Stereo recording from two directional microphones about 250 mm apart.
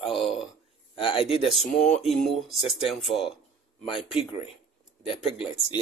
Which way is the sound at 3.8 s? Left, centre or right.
Left.